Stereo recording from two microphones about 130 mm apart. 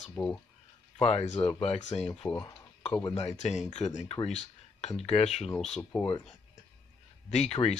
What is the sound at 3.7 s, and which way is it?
Speech, 60° left (ahead or behind).